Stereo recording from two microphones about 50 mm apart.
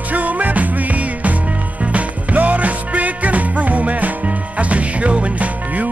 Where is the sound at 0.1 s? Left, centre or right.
Right.